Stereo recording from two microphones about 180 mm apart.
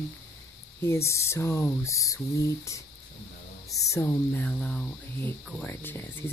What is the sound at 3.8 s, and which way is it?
Speech, 15° left (ahead or behind).